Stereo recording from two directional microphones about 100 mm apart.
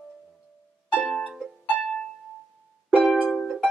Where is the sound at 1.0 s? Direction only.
5° left (ahead or behind).